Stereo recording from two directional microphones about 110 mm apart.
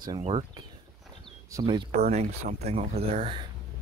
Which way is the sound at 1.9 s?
90° right.